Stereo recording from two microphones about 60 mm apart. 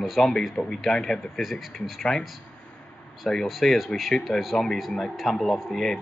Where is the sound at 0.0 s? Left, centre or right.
Centre.